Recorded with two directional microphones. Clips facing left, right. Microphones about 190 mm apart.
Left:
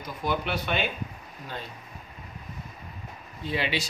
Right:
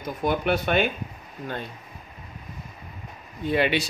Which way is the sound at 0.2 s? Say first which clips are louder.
Right 5 dB; 50° right (ahead or behind).